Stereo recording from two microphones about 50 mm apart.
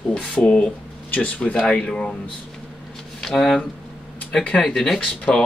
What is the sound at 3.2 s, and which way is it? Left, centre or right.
Speech, centre.